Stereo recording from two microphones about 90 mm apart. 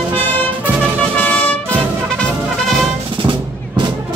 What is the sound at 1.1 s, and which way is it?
Music, 15° left (ahead or behind).